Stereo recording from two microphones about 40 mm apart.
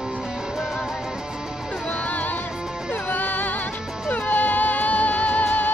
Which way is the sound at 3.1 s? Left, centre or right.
Left.